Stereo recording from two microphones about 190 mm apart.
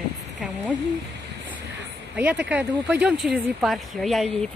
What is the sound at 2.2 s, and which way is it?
Speech, 10° right (ahead or behind).